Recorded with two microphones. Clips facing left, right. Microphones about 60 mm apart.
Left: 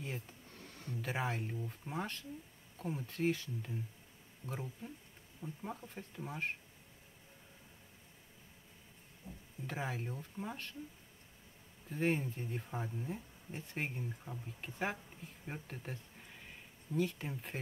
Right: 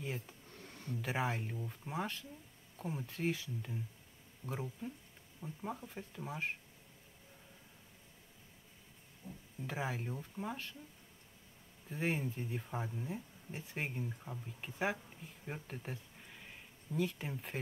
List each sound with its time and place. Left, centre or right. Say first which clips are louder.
0.0 s speech: right 1 dB; centre
9.7 s speech: right 1 dB; centre
11.9 s speech: left 2 dB; centre